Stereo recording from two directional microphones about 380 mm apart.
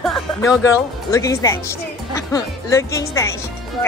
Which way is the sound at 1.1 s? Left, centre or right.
Centre.